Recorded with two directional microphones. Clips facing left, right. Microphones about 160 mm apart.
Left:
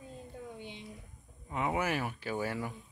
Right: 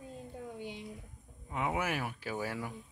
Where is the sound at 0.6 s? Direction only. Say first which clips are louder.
Right 3 dB; 5° right (ahead or behind).